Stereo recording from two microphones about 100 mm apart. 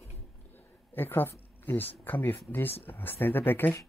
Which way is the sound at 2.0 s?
20° left (ahead or behind).